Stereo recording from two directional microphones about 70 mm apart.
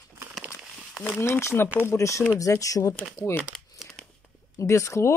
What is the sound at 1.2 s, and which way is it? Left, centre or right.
Speech, left.